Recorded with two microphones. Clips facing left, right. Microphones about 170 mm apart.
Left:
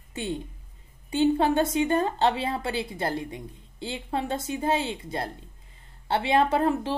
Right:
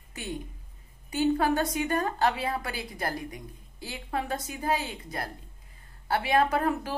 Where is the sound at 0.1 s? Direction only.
25° left (ahead or behind).